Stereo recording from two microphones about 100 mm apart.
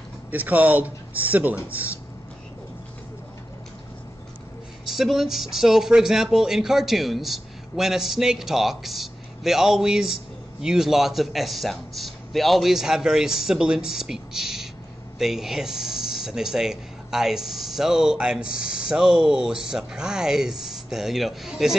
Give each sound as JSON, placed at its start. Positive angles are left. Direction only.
{"t": 0.3, "sound": "speech", "side_deg": -15}
{"t": 4.8, "sound": "speech", "side_deg": 0}